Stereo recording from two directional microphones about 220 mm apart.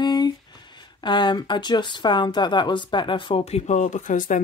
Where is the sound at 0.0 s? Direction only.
20° left (ahead or behind).